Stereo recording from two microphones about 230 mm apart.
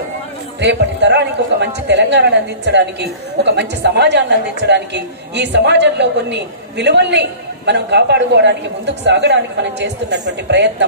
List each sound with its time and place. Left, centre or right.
0.6 s a man's voice: right